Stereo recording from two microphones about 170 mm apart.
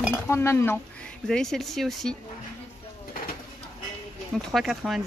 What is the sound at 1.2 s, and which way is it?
Speech, 5° left (ahead or behind).